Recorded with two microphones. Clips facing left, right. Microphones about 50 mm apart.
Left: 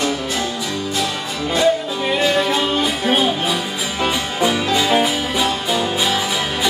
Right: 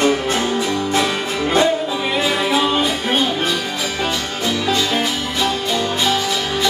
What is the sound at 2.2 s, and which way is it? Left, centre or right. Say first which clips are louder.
Music: even; centre.